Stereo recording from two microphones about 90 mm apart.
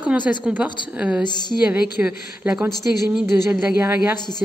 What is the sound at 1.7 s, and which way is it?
Speech, 15° right (ahead or behind).